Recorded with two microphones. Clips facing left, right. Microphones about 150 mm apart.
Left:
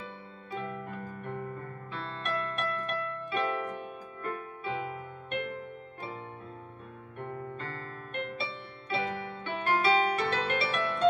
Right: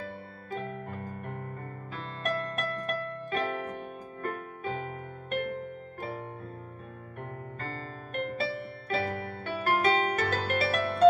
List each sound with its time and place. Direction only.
0.5 s music: 45° right (ahead or behind)
8.1 s music: 40° right (ahead or behind)